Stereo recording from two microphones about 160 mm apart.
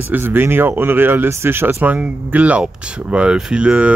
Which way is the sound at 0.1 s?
15° right (ahead or behind).